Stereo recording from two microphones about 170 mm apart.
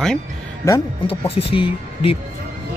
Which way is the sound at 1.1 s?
35° left (ahead or behind).